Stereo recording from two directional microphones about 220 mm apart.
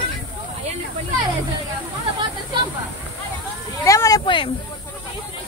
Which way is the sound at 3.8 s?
15° left (ahead or behind).